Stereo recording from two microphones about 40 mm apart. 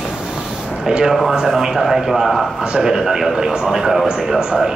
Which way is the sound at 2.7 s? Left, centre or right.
Centre.